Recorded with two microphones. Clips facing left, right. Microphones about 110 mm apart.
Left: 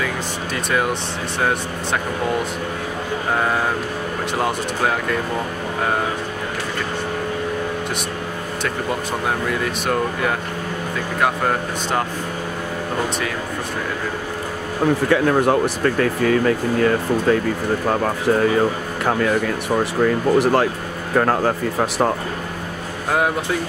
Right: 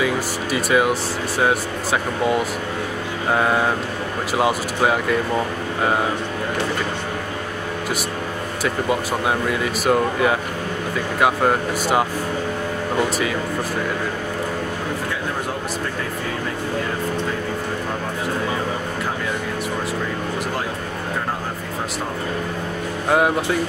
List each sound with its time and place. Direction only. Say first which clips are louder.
0.0 s speech: right 3 dB; 5° right (ahead or behind)
3.3 s speech: right 3 dB; 5° right (ahead or behind)
9.5 s speech: right 2 dB; 5° right (ahead or behind)
15.0 s speech: left 10 dB; 70° left (ahead or behind)
23.0 s speech: right 2 dB; centre (ahead or behind)